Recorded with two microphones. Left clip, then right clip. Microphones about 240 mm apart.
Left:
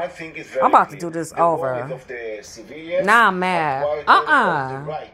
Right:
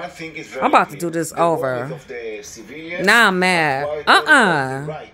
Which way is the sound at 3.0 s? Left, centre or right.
Right.